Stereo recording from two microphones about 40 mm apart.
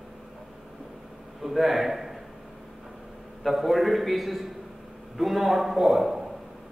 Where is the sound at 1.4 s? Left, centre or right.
Centre.